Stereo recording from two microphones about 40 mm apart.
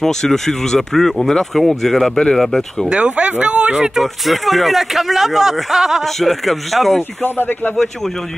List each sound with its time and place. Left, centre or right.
0.0 s speech: centre
2.9 s speech: right
3.7 s speech: centre
7.0 s speech: left